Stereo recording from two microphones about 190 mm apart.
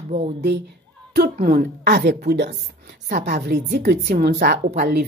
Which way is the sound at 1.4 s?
50° right (ahead or behind).